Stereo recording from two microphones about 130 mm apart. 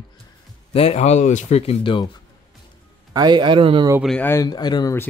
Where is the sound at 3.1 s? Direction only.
35° right (ahead or behind).